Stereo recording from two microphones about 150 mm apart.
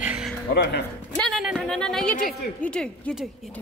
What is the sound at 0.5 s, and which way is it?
Speech, 90° left.